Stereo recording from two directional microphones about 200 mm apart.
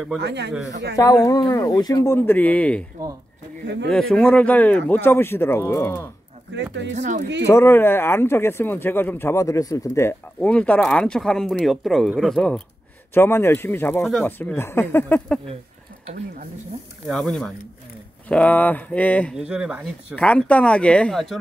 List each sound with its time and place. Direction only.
0.2 s speech: 60° right (ahead or behind)
0.9 s speech: 20° left (ahead or behind)
3.9 s speech: centre (ahead or behind)
6.5 s speech: 60° right (ahead or behind)
7.0 s speech: 40° right (ahead or behind)
7.4 s speech: 15° left (ahead or behind)
17.1 s speech: centre (ahead or behind)
19.4 s speech: 5° right (ahead or behind)
20.2 s speech: 5° left (ahead or behind)